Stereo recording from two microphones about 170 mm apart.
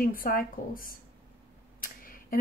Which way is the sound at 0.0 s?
55° left (ahead or behind).